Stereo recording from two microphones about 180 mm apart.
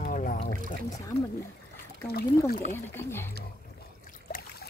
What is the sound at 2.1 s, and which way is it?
Speech, 55° left (ahead or behind).